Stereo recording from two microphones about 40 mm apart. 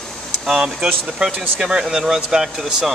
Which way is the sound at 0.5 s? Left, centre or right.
Centre.